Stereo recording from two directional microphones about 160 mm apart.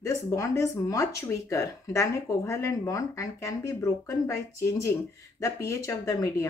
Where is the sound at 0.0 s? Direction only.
20° left (ahead or behind).